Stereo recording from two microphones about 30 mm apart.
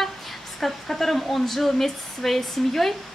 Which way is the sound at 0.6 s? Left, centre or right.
Centre.